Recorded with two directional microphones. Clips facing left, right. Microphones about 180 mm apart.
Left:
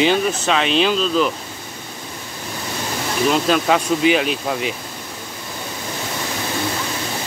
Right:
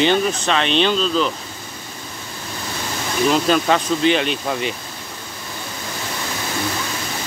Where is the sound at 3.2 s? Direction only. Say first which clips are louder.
Even; centre (ahead or behind).